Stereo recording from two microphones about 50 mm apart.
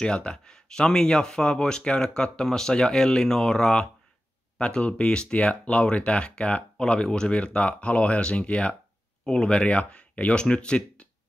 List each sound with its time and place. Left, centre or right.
0.0 s speech: centre
9.2 s speech: centre